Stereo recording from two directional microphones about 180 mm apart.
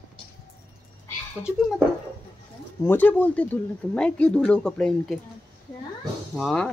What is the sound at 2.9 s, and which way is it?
Speech, 10° left (ahead or behind).